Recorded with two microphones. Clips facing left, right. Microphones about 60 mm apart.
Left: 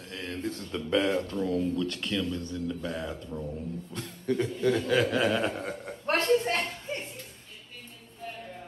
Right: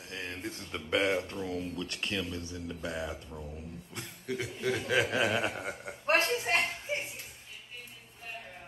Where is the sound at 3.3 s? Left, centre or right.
Centre.